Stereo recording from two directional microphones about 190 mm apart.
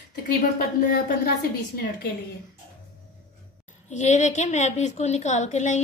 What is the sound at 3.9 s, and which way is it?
A woman's voice, 40° left (ahead or behind).